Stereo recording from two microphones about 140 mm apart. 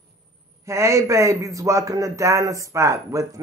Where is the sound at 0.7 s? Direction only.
20° right (ahead or behind).